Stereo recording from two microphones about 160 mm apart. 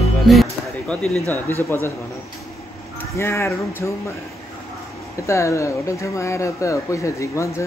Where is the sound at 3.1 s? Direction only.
15° left (ahead or behind).